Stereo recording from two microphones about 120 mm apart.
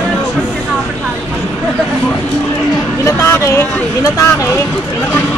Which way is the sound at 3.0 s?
25° left (ahead or behind).